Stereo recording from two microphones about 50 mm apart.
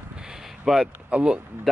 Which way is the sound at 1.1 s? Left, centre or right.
Right.